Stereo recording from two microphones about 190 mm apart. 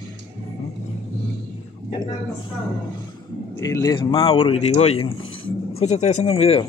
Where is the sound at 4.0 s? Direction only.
30° left (ahead or behind).